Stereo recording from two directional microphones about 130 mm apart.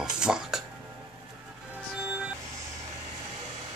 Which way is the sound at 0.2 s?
5° right (ahead or behind).